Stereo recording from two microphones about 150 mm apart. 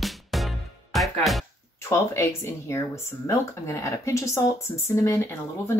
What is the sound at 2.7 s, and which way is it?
A woman's voice, 20° left (ahead or behind).